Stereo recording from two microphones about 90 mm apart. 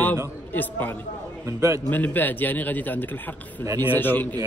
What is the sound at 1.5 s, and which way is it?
Speech, 35° right (ahead or behind).